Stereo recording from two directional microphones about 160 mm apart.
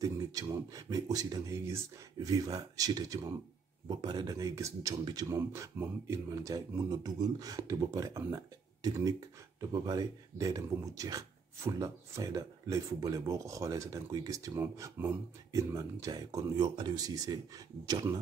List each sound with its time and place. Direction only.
0.0 s speech: 20° right (ahead or behind)